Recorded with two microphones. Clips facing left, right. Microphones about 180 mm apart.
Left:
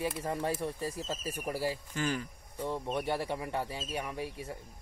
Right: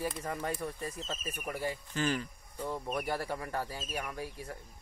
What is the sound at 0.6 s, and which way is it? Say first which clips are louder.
Speech: left 3 dB; 30° left (ahead or behind).